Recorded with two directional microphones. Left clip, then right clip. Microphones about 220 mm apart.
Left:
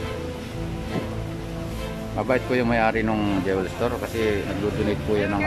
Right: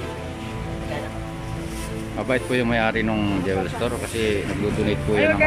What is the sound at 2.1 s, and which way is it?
Speech, centre (ahead or behind).